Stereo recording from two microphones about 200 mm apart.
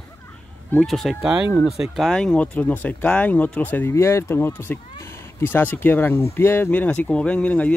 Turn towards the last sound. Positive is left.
turn(degrees=5)  # may be behind; listen again after turning